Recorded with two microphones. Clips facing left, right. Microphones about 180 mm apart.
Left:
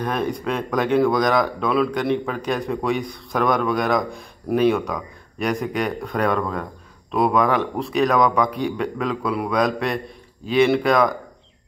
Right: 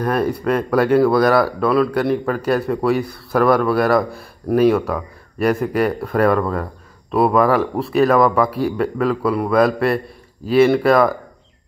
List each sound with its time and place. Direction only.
0.0 s speech: 5° right (ahead or behind)